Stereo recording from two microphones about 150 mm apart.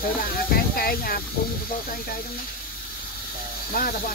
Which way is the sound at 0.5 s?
80° left.